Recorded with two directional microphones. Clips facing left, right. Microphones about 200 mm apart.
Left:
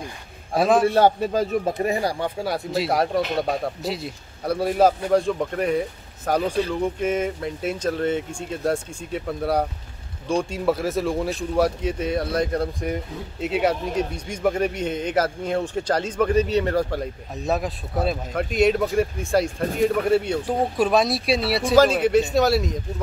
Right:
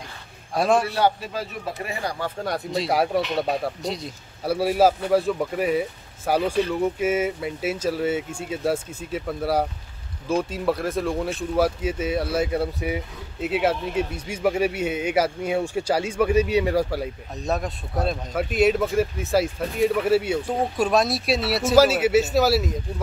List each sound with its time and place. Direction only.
0.6 s speech: centre (ahead or behind)
0.9 s speech: 45° left (ahead or behind)
2.4 s speech: centre (ahead or behind)